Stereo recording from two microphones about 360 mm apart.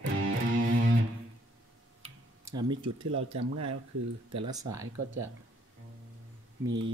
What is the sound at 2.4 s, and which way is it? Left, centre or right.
Speech, centre.